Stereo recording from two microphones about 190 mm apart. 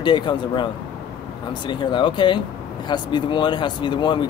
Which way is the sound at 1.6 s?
25° left (ahead or behind).